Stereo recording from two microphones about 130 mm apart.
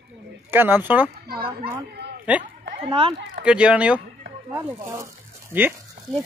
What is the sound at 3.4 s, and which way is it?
Speech, 10° right (ahead or behind).